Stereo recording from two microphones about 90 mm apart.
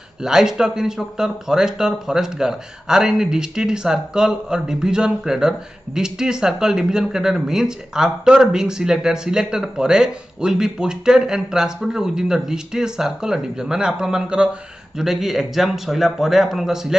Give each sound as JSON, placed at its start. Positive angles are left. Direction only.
{"t": 0.2, "sound": "speech", "side_deg": -5}